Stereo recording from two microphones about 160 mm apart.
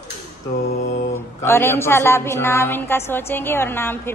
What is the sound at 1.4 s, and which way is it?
A woman's voice, 15° left (ahead or behind).